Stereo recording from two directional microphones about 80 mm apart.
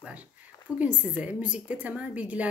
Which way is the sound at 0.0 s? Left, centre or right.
Centre.